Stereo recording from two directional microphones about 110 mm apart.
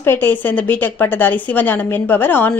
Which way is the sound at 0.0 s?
20° left (ahead or behind).